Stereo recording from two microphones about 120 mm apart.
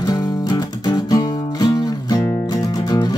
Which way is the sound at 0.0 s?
35° left (ahead or behind).